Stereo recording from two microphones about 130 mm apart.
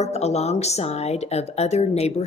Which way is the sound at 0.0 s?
55° left (ahead or behind).